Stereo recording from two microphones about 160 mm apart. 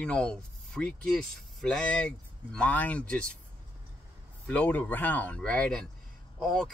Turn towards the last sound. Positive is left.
turn(degrees=0)  # may be behind; listen again after turning